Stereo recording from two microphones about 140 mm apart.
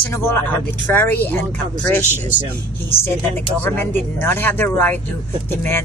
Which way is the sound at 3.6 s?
15° left (ahead or behind).